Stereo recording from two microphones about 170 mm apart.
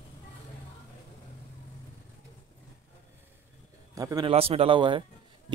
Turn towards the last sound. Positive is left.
turn(degrees=-30)  # may be behind; listen again after turning